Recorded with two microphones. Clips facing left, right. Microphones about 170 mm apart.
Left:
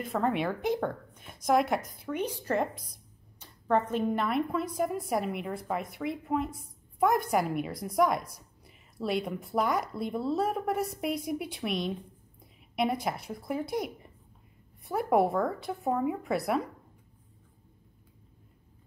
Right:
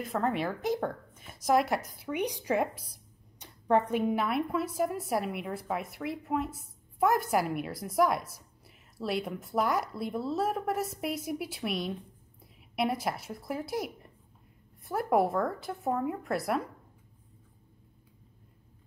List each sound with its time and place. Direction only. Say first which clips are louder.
0.0 s speech: left 1 dB; centre (ahead or behind)